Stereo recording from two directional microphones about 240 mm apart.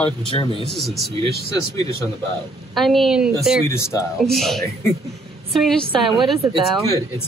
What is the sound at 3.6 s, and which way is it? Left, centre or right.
Speech, centre.